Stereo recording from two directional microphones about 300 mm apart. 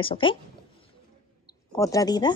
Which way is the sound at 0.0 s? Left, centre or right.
Centre.